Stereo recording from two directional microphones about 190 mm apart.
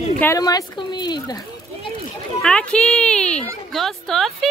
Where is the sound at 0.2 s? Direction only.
15° left (ahead or behind).